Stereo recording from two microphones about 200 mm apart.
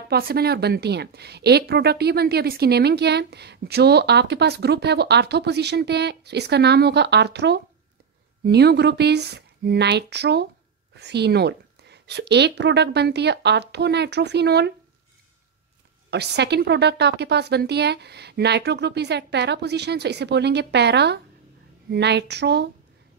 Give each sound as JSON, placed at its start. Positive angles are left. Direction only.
{"t": 0.1, "sound": "a woman's voice", "side_deg": -50}
{"t": 16.1, "sound": "a woman's voice", "side_deg": -55}